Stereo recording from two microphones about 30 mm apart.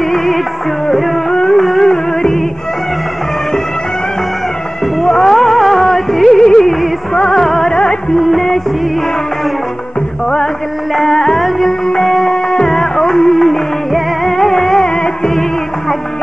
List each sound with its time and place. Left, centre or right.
0.0 s music: centre
0.8 s a sound: centre
1.3 s a sound: centre
1.6 s a sound: centre
1.9 s music: centre
5.0 s music: centre
7.2 s music: centre
8.2 s music: centre
11.0 s music: centre